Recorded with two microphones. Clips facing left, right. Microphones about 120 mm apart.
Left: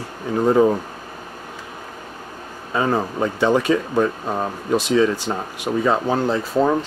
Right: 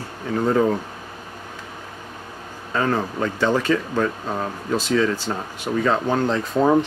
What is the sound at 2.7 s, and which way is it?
Speech, 15° left (ahead or behind).